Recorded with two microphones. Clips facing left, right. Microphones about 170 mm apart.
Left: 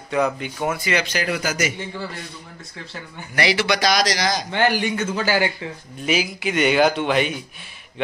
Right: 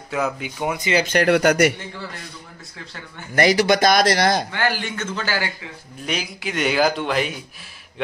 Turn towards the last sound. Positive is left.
turn(degrees=0)  # may be behind; listen again after turning